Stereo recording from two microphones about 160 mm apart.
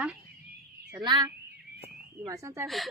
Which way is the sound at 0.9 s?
25° right (ahead or behind).